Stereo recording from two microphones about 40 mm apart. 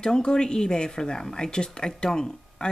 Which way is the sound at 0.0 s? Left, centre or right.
Centre.